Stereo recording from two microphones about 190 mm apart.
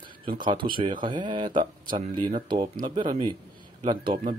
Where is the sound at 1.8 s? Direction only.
45° right (ahead or behind).